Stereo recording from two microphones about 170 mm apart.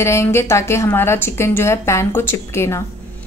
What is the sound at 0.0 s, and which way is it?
A woman's voice, 15° left (ahead or behind).